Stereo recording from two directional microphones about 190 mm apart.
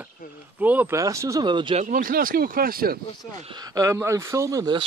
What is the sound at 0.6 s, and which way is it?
Speech, 10° right (ahead or behind).